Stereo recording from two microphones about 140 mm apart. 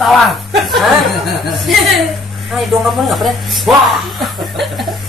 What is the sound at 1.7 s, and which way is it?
Speech, centre (ahead or behind).